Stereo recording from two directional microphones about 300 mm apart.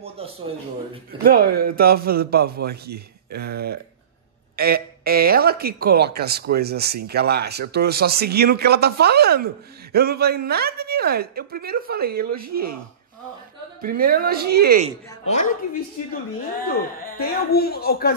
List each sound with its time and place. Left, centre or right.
1.2 s a woman's voice: right
13.7 s speech: right
15.2 s a woman's voice: left
16.6 s a man's voice: left